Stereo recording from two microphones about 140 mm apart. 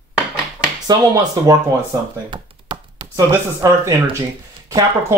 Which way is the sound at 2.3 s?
35° right (ahead or behind).